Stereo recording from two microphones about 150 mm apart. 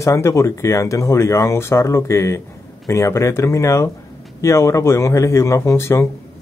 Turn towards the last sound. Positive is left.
turn(degrees=20)  # may be behind; listen again after turning